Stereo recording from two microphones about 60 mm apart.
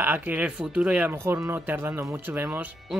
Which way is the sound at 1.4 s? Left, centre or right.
Right.